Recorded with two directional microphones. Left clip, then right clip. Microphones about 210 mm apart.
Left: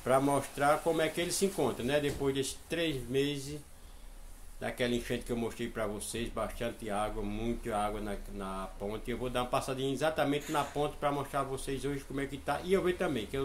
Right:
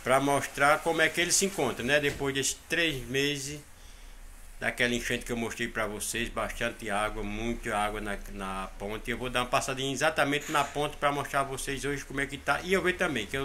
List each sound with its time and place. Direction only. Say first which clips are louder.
0.0 s speech: right 3 dB; 5° left (ahead or behind)
4.6 s speech: right 5 dB; centre (ahead or behind)